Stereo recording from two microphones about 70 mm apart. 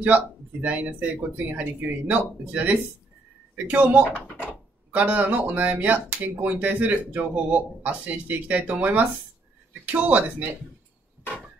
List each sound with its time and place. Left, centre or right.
0.0 s speech: right